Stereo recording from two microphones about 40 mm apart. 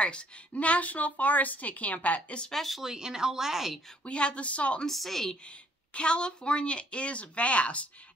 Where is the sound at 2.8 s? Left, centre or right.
Centre.